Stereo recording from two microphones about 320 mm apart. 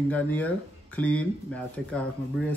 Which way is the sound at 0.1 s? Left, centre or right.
Centre.